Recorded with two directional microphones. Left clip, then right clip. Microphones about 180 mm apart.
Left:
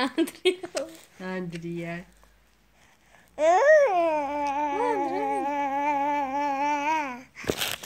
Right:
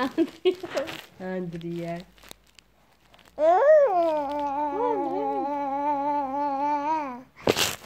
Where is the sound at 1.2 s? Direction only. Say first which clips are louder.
Even; 30° left (ahead or behind).